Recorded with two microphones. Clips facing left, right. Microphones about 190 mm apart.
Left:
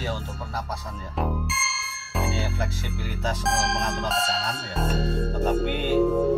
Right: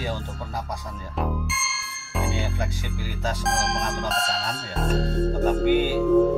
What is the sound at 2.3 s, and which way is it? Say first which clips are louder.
Music: right 1 dB; 15° right (ahead or behind).